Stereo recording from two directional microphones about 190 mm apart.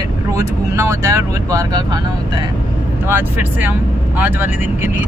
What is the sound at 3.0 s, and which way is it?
Speech, 10° right (ahead or behind).